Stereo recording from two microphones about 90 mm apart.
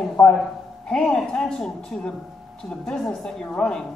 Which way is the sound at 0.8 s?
10° left (ahead or behind).